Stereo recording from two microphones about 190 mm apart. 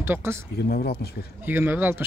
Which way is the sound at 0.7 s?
55° left (ahead or behind).